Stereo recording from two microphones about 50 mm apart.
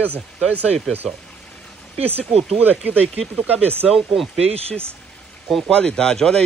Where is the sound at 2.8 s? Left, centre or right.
Right.